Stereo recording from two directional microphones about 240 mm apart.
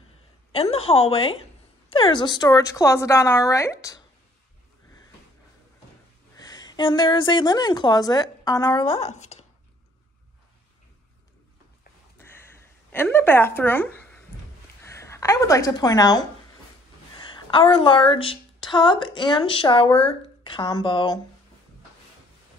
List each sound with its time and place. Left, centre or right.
0.5 s a woman's voice: left
6.4 s a woman's voice: centre
12.2 s a sound: centre
12.9 s a woman's voice: centre